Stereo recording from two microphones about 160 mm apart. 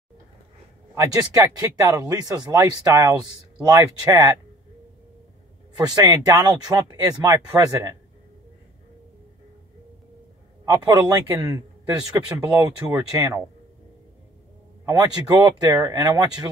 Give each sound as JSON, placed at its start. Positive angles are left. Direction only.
{"t": 0.9, "sound": "speech", "side_deg": -20}
{"t": 5.8, "sound": "speech", "side_deg": -25}
{"t": 10.6, "sound": "speech", "side_deg": -25}
{"t": 14.9, "sound": "speech", "side_deg": -20}